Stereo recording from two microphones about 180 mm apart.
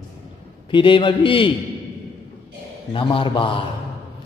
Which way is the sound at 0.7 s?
30° left (ahead or behind).